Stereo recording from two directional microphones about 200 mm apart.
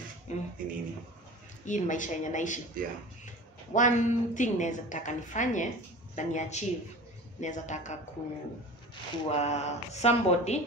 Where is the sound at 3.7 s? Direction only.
40° left (ahead or behind).